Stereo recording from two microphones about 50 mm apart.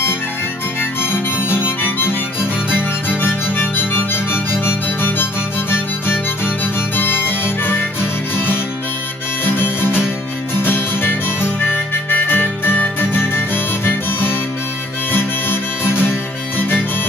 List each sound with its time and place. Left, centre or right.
0.7 s harmonica: left
9.4 s music: left
10.5 s harmonica: left
13.0 s music: left